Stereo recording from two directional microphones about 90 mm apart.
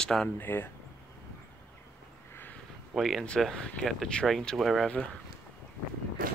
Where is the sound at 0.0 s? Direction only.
5° left (ahead or behind).